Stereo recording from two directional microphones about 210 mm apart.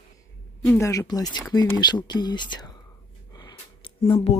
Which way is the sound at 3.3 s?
20° left (ahead or behind).